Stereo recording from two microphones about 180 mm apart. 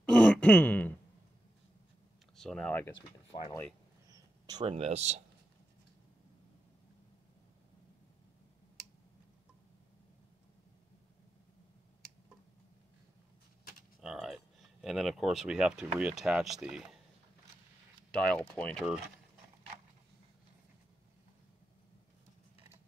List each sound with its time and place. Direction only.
0.0 s throat clearing: 5° left (ahead or behind)
2.3 s speech: 5° left (ahead or behind)
3.3 s speech: 30° left (ahead or behind)
4.1 s speech: 25° right (ahead or behind)
14.0 s speech: centre (ahead or behind)
18.1 s speech: 5° left (ahead or behind)